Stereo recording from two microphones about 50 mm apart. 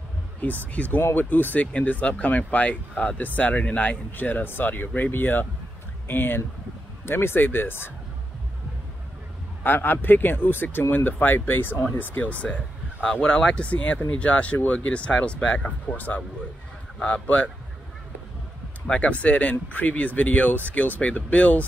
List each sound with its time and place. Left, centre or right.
0.4 s speech: left
9.6 s speech: left
18.9 s speech: left